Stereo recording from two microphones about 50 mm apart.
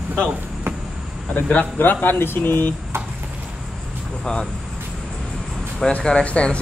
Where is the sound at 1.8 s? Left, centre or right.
Left.